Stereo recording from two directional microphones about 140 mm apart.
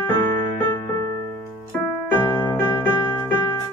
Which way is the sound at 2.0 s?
15° left (ahead or behind).